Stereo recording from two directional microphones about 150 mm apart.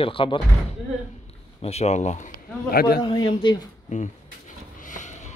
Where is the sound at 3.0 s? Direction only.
30° left (ahead or behind).